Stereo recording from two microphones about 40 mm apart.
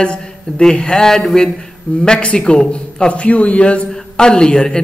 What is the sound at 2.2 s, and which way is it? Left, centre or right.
Speech, left.